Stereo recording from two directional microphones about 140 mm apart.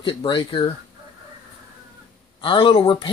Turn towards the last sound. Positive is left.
turn(degrees=40)  # may be behind; listen again after turning